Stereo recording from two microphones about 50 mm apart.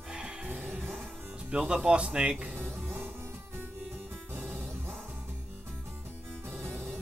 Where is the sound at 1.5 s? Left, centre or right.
Right.